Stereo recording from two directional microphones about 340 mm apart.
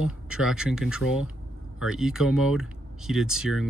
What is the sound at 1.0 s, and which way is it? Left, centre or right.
Speech, left.